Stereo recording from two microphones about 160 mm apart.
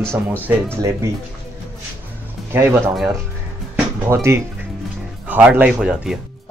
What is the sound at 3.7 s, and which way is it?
Music, 15° right (ahead or behind).